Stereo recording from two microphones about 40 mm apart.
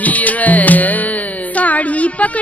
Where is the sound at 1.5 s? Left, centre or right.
Left.